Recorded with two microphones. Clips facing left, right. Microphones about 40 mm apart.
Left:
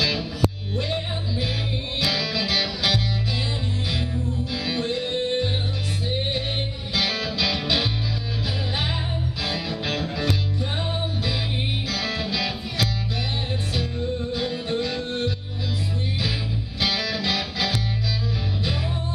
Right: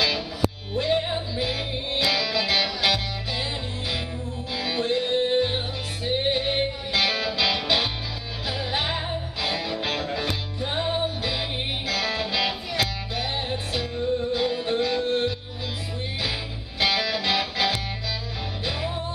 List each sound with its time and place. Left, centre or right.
0.7 s music: centre
4.6 s music: centre
14.3 s music: centre
16.8 s music: centre